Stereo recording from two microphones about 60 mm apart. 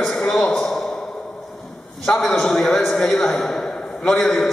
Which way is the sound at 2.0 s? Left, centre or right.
Centre.